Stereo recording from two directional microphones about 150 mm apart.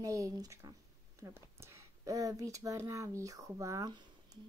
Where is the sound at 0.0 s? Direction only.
20° right (ahead or behind).